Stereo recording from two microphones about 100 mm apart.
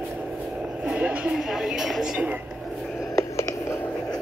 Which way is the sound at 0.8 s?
10° right (ahead or behind).